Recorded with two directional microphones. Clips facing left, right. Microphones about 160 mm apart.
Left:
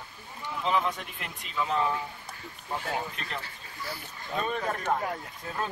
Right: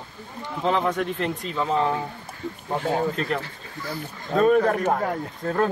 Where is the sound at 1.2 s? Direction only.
30° right (ahead or behind).